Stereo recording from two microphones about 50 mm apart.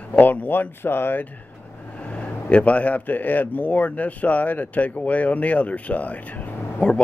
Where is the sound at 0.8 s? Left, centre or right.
Left.